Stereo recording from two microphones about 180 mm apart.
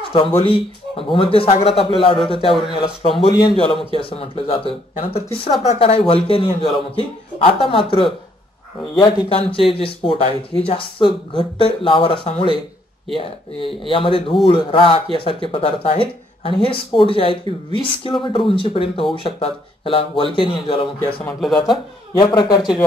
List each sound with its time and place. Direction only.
0.1 s speech: 30° left (ahead or behind)
21.2 s speech: 5° left (ahead or behind)
22.2 s speech: 25° left (ahead or behind)